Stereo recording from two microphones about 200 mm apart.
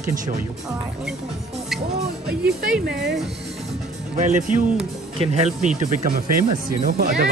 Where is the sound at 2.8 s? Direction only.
55° right (ahead or behind).